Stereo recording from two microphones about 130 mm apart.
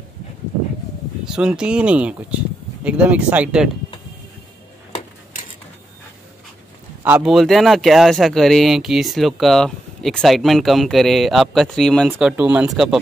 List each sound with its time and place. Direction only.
1.2 s speech: 5° right (ahead or behind)
7.2 s speech: centre (ahead or behind)
12.2 s speech: 10° right (ahead or behind)